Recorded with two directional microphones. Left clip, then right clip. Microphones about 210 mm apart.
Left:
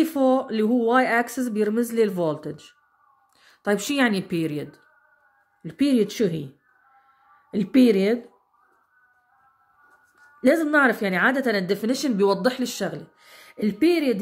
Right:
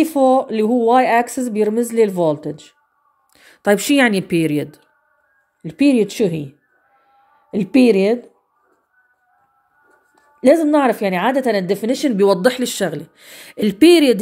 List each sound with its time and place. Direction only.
0.0 s speech: 15° right (ahead or behind)
3.3 s speech: 30° right (ahead or behind)
5.6 s speech: 15° right (ahead or behind)
7.5 s speech: 15° right (ahead or behind)
10.4 s speech: 15° right (ahead or behind)
12.3 s speech: 35° right (ahead or behind)